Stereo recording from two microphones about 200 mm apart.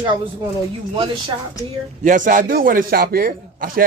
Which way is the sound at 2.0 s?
40° right (ahead or behind).